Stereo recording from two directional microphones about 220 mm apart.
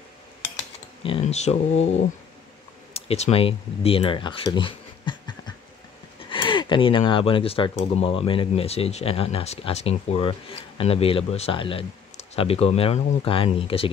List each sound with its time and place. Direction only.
1.0 s speech: 25° left (ahead or behind)
2.9 s speech: 25° left (ahead or behind)